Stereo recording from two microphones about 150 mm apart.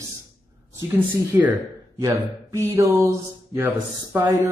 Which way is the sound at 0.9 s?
15° right (ahead or behind).